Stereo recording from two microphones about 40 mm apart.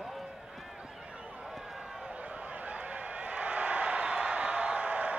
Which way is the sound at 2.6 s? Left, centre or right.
Right.